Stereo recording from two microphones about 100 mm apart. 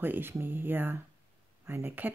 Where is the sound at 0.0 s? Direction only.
20° right (ahead or behind).